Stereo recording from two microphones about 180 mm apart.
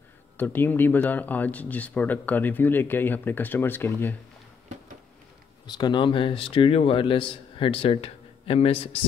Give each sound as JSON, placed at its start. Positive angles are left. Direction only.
{"t": 0.4, "sound": "speech", "side_deg": 10}
{"t": 5.7, "sound": "a man's voice", "side_deg": 25}